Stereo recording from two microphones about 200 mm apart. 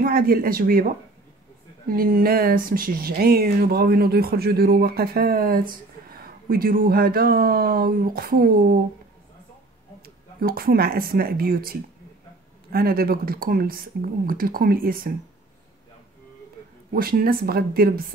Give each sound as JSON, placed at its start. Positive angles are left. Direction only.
{"t": 0.0, "sound": "speech", "side_deg": -45}
{"t": 1.9, "sound": "speech", "side_deg": -45}
{"t": 10.0, "sound": "speech", "side_deg": -50}
{"t": 16.9, "sound": "speech", "side_deg": -45}